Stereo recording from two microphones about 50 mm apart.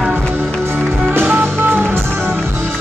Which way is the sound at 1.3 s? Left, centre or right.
Right.